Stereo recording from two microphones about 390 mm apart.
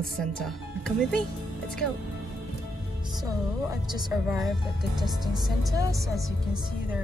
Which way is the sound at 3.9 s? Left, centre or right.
Centre.